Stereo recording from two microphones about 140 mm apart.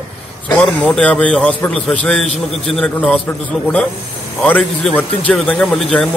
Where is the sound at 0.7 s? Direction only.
10° left (ahead or behind).